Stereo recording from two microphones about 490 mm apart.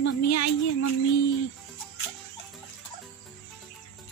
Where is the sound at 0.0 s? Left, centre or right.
Left.